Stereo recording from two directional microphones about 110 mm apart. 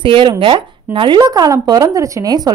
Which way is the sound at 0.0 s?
50° right (ahead or behind).